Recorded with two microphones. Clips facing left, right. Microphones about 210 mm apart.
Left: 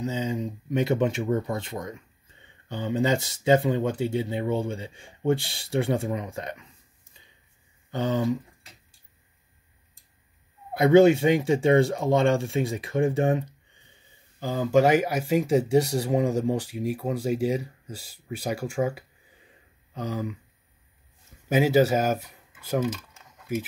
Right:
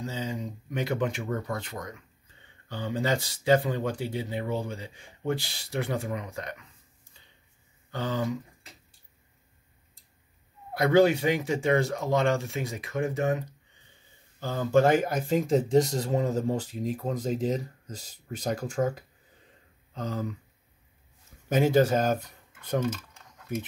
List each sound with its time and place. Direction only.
0.0 s speech: 20° left (ahead or behind)
7.9 s speech: 20° left (ahead or behind)
10.8 s speech: 25° left (ahead or behind)
14.4 s speech: 10° left (ahead or behind)
21.5 s speech: 5° left (ahead or behind)
22.9 s typing: 5° left (ahead or behind)